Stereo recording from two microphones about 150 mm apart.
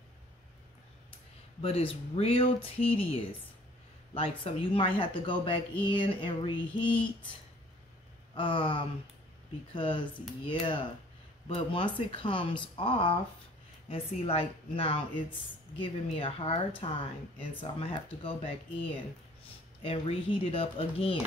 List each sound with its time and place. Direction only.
1.6 s speech: 40° left (ahead or behind)
8.4 s speech: 35° left (ahead or behind)
19.8 s speech: 40° left (ahead or behind)